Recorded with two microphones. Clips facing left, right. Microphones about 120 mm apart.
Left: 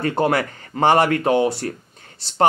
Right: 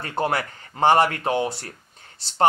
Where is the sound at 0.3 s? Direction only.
70° left (ahead or behind).